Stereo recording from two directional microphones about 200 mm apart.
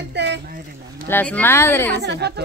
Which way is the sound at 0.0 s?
60° right (ahead or behind).